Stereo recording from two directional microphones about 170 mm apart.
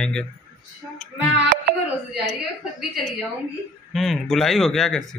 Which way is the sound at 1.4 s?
65° right (ahead or behind).